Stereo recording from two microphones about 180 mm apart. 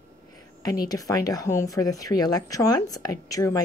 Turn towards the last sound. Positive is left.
turn(degrees=20)  # may be behind; listen again after turning